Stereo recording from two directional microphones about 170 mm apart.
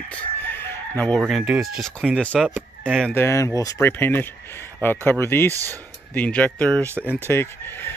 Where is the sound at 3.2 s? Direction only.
20° left (ahead or behind).